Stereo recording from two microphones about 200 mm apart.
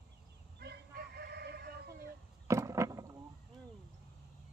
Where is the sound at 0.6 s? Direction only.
55° right (ahead or behind).